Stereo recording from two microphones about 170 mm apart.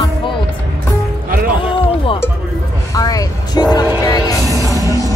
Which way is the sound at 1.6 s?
30° left (ahead or behind).